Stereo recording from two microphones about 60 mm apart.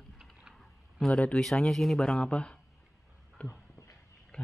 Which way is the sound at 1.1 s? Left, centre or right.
Left.